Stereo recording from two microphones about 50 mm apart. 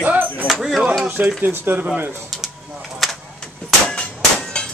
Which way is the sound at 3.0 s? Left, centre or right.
Centre.